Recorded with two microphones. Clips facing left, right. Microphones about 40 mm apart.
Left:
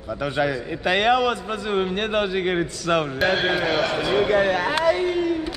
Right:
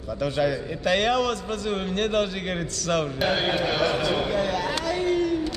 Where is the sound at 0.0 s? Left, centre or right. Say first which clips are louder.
Left 1 dB; centre.